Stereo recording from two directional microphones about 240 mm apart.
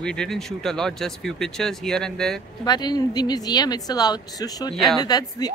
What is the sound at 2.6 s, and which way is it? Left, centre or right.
Speech, centre.